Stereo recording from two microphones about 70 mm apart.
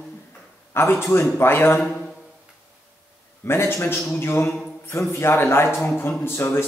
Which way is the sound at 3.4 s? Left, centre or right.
Left.